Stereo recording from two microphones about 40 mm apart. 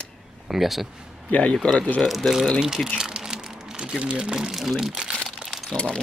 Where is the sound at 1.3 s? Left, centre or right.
Left.